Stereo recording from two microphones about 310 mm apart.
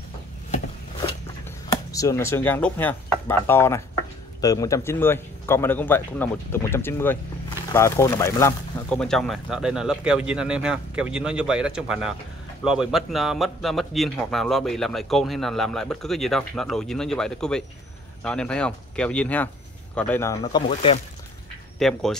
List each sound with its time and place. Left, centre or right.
1.9 s a man's voice: centre
20.4 s speech: centre
21.7 s a man's voice: centre